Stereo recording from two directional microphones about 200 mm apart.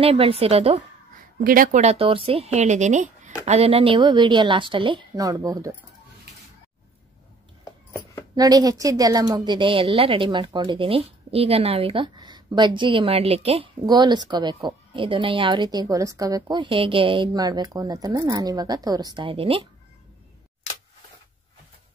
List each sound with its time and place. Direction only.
0.0 s a woman's voice: 30° right (ahead or behind)
1.4 s a woman's voice: 45° right (ahead or behind); by 5.8 s 15° right (ahead or behind)
7.6 s a sound: 15° left (ahead or behind)
8.4 s a woman's voice: 20° right (ahead or behind)